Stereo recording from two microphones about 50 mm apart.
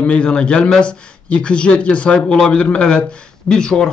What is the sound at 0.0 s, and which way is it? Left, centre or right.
A man's voice, left.